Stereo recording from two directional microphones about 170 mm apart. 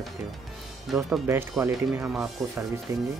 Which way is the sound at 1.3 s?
15° right (ahead or behind).